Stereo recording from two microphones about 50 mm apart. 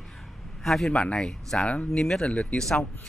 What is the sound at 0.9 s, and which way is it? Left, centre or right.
Speech, left.